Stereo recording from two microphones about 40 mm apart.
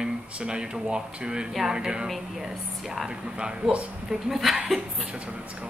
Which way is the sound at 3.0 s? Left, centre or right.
Right.